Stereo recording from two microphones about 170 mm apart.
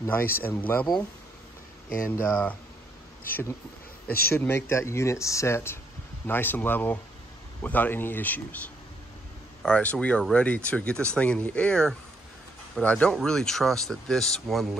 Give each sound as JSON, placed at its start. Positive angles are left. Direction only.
{"t": 0.0, "sound": "speech", "side_deg": 10}
{"t": 2.0, "sound": "speech", "side_deg": 10}
{"t": 4.3, "sound": "speech", "side_deg": 15}